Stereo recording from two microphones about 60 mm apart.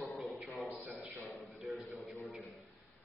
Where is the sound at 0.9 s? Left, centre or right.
Right.